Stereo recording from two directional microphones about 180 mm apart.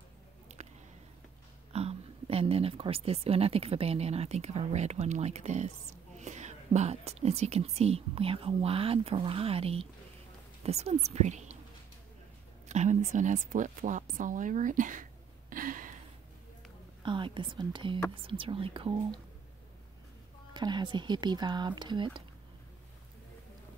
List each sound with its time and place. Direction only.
0.5 s a sound: 40° right (ahead or behind)
1.7 s speech: 35° right (ahead or behind)
12.6 s a woman's voice: 40° right (ahead or behind)
15.5 s a sound: 50° right (ahead or behind)
17.0 s speech: 25° right (ahead or behind)
20.5 s speech: 25° right (ahead or behind)